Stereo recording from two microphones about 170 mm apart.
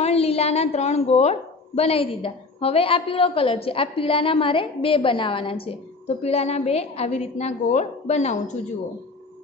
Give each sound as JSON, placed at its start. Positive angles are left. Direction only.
{"t": 0.0, "sound": "a woman's voice", "side_deg": 35}